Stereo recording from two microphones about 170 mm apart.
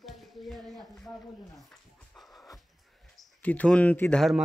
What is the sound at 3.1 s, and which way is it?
Speech, 10° left (ahead or behind).